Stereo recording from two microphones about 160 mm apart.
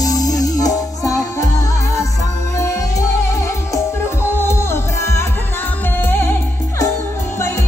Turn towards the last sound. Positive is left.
turn(degrees=15)  # may be behind; listen again after turning